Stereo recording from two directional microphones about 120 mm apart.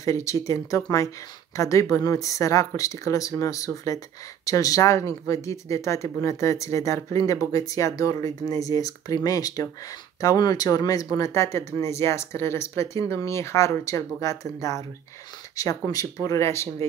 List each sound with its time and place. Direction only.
0.0 s speech: 25° left (ahead or behind)